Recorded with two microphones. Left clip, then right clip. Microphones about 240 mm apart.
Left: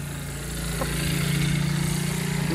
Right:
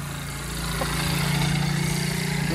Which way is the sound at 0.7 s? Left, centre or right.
Centre.